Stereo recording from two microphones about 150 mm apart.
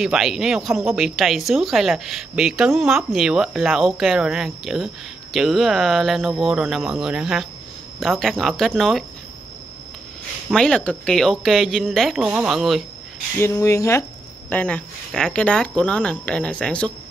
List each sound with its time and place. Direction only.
0.0 s speech: centre (ahead or behind)
10.5 s speech: 5° left (ahead or behind)
13.4 s speech: 20° left (ahead or behind)
14.5 s speech: 10° left (ahead or behind)